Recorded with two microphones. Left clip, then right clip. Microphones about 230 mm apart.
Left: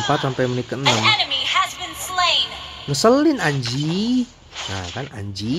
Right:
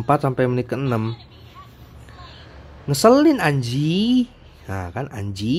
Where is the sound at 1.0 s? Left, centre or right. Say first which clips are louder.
Left 16 dB; left.